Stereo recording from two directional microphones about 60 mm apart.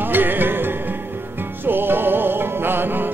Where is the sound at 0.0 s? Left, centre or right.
Right.